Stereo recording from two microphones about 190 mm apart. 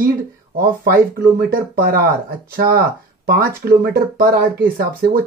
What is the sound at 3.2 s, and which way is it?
Speech, 55° right (ahead or behind).